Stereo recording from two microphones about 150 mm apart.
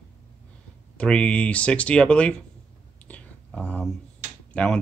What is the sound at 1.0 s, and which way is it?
Speech, 5° left (ahead or behind).